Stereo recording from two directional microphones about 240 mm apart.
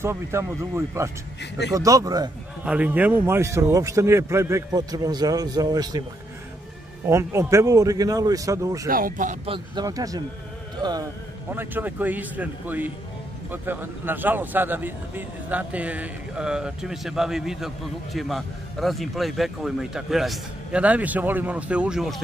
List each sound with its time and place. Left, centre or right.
0.0 s a man's voice: centre
7.1 s a man's voice: centre
8.8 s speech: right
9.8 s a man's voice: centre